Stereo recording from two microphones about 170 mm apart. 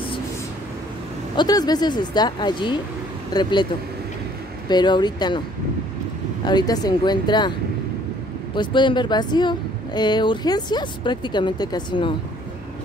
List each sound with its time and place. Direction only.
1.3 s speech: 25° left (ahead or behind)
4.6 s speech: 25° left (ahead or behind)
6.4 s speech: 25° left (ahead or behind)
8.5 s speech: 25° left (ahead or behind)